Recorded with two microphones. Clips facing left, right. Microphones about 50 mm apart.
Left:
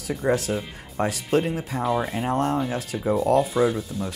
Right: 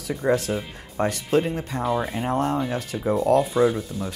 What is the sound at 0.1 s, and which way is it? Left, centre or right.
Speech, centre.